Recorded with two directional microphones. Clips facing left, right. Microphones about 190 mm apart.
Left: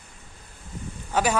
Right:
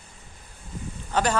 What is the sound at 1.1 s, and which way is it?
Speech, 10° left (ahead or behind).